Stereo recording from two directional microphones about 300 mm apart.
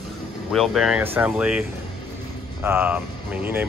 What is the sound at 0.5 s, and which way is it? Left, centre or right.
Speech, centre.